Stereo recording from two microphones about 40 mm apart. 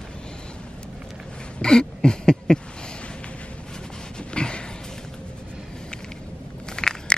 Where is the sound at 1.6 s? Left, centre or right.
Centre.